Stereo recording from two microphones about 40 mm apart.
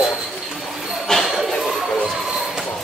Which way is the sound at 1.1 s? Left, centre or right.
Centre.